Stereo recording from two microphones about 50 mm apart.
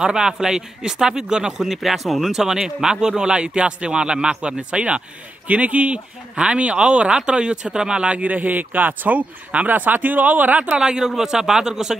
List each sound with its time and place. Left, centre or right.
0.0 s speech: centre
1.7 s speech: centre